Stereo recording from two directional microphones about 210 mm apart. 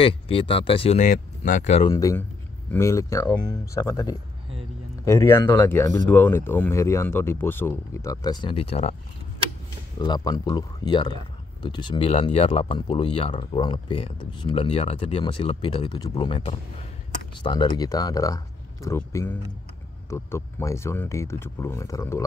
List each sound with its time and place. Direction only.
0.0 s speech: 25° left (ahead or behind)
1.9 s speech: 15° left (ahead or behind)
9.9 s speech: 20° left (ahead or behind)